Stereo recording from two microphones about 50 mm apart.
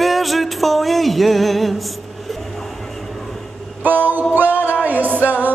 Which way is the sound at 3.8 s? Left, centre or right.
Right.